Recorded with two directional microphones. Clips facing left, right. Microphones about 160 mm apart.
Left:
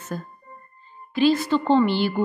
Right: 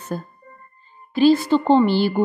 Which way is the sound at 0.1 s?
35° right (ahead or behind).